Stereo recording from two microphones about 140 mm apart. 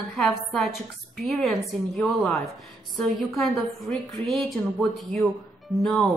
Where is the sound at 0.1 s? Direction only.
Centre (ahead or behind).